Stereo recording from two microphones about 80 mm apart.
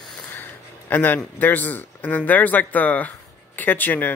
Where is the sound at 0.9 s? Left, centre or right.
Left.